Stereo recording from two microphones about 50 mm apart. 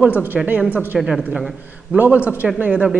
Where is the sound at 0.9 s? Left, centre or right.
Centre.